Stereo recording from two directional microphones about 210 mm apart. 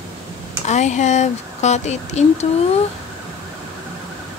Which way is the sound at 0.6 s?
35° left (ahead or behind).